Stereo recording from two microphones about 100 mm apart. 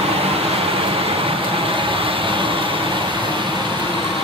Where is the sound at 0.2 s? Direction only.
75° right (ahead or behind).